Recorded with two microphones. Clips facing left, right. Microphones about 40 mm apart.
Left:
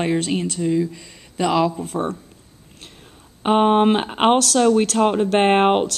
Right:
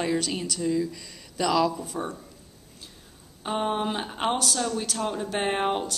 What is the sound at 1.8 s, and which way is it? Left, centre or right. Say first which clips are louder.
Speech: left 8 dB; left.